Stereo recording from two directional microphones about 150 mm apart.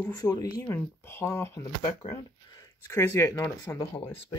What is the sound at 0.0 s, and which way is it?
Speech, 25° left (ahead or behind).